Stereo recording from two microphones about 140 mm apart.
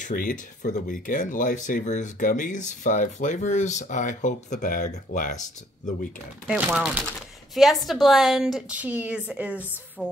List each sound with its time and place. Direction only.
0.0 s speech: 80° left
6.4 s a woman's voice: 5° right (ahead or behind)